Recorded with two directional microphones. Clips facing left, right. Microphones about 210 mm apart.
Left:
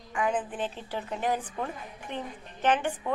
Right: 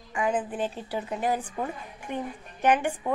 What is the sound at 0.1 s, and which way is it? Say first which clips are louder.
A woman's voice: right 2 dB; 10° right (ahead or behind).